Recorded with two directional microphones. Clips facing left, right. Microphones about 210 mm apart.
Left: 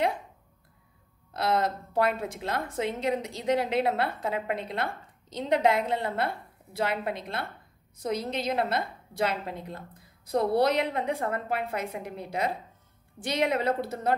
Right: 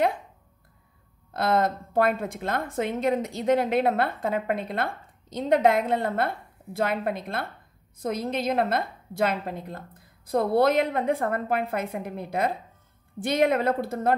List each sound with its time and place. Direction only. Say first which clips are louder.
1.3 s a woman's voice: right 3 dB; 50° right (ahead or behind)